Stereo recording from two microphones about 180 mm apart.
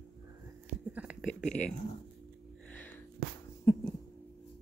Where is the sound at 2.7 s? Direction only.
10° left (ahead or behind).